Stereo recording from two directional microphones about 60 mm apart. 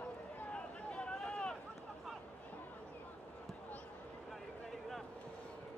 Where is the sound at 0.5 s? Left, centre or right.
Centre.